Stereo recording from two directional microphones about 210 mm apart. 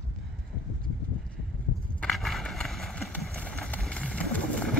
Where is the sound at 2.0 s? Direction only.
Centre (ahead or behind).